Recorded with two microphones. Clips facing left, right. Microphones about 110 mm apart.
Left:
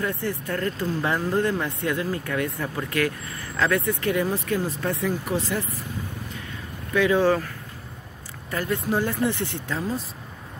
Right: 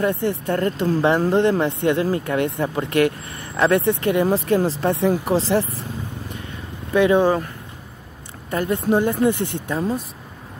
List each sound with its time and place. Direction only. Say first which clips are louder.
0.0 s speech: right 7 dB; 25° right (ahead or behind)
6.9 s speech: right 4 dB; 25° right (ahead or behind)
8.5 s speech: right 6 dB; 25° right (ahead or behind)